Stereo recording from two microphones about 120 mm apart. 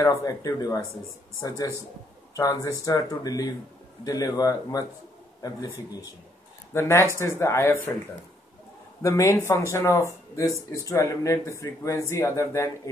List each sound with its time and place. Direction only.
0.0 s speech: 30° left (ahead or behind)
6.7 s speech: 20° left (ahead or behind)
9.0 s speech: 25° left (ahead or behind)